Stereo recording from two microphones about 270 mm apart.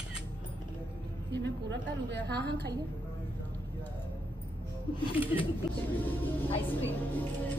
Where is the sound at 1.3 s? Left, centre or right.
Right.